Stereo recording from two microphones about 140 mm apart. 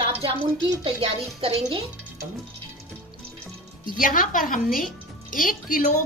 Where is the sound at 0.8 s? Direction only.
45° right (ahead or behind).